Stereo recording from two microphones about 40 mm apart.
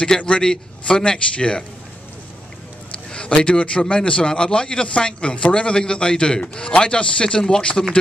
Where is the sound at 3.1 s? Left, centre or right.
Left.